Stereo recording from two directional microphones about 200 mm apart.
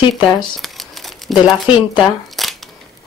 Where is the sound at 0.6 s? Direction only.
Centre (ahead or behind).